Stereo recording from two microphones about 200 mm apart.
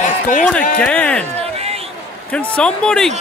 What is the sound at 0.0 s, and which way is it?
Music, 40° left (ahead or behind).